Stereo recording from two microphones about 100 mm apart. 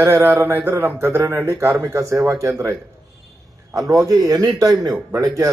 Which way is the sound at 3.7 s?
35° right (ahead or behind).